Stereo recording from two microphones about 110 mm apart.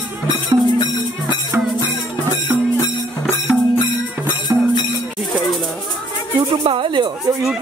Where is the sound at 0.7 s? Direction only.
40° left (ahead or behind).